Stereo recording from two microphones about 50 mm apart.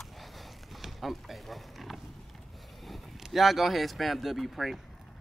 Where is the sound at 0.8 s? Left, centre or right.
Centre.